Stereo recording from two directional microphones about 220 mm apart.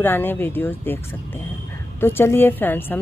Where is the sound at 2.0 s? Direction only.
10° left (ahead or behind).